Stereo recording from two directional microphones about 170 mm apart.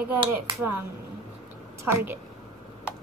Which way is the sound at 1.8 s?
10° right (ahead or behind).